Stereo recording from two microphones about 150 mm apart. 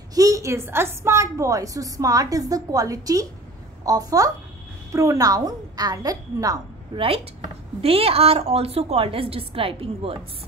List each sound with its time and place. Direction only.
0.1 s a woman's voice: 20° right (ahead or behind)
7.8 s a woman's voice: 40° right (ahead or behind)